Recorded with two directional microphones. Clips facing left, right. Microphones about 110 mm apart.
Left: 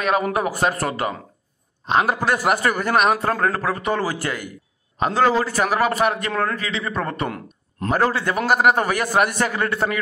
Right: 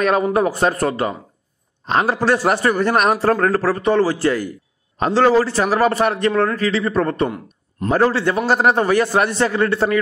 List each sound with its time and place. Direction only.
0.0 s a man's voice: 35° right (ahead or behind)